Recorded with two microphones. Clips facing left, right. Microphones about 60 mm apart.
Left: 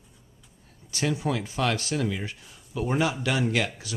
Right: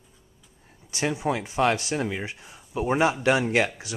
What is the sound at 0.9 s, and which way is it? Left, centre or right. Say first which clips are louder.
Speech: right 1 dB; right.